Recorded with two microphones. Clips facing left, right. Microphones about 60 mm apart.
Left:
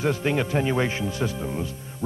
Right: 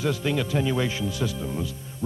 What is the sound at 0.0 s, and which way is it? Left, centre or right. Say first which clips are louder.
Speech: left 2 dB; left.